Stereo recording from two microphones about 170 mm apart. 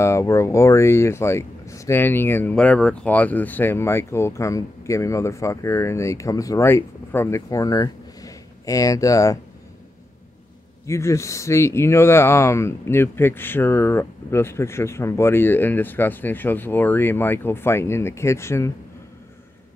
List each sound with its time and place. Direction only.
0.0 s speech: 15° left (ahead or behind)
10.9 s speech: 15° left (ahead or behind)